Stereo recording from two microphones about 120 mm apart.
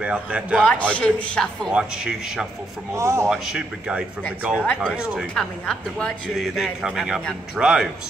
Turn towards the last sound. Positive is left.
turn(degrees=-5)  # may be behind; listen again after turning